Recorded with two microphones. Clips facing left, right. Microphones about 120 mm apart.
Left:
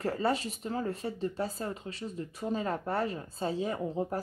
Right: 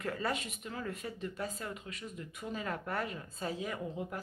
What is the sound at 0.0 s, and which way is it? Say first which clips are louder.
Speech: left 6 dB; 30° left (ahead or behind).